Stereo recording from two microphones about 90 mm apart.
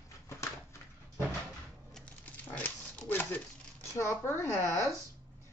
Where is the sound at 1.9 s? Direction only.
15° left (ahead or behind); by 4.6 s 30° left (ahead or behind).